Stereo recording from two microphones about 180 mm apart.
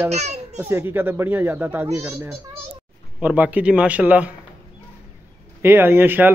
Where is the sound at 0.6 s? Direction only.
10° right (ahead or behind).